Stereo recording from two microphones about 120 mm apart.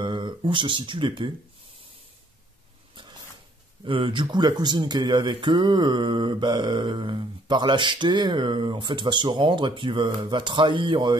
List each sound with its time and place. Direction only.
0.0 s speech: 40° right (ahead or behind)
3.8 s speech: 45° right (ahead or behind)